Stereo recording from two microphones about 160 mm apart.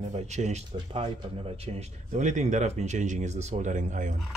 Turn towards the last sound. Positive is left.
turn(degrees=-50)  # may be behind; listen again after turning